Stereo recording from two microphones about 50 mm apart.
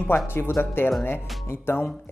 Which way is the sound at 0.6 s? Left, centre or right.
Left.